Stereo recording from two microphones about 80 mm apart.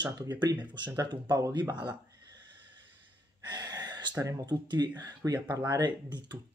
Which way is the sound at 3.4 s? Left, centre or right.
Right.